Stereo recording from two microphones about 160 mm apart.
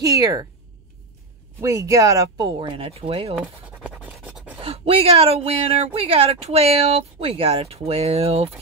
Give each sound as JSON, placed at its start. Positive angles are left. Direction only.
{"t": 0.0, "sound": "speech", "side_deg": -20}
{"t": 1.6, "sound": "speech", "side_deg": -20}
{"t": 3.3, "sound": "scratch", "side_deg": -10}
{"t": 4.6, "sound": "speech", "side_deg": -35}